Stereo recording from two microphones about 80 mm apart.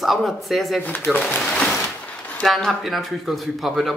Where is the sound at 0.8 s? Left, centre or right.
Left.